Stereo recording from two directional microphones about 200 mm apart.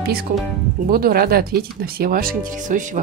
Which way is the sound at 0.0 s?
50° right (ahead or behind).